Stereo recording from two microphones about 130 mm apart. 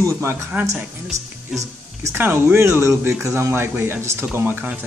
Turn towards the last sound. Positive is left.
turn(degrees=-10)  # may be behind; listen again after turning